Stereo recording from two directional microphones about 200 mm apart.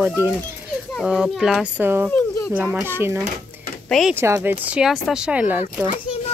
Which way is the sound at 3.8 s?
Centre (ahead or behind).